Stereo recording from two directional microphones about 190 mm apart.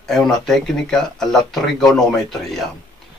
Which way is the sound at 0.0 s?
Centre (ahead or behind).